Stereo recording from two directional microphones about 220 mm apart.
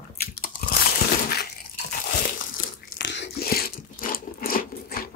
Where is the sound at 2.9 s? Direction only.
55° left (ahead or behind).